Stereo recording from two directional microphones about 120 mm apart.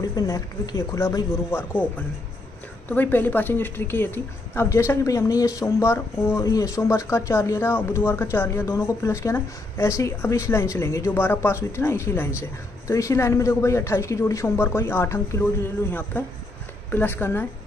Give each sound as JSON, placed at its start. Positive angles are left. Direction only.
{"t": 0.1, "sound": "a woman's voice", "side_deg": 30}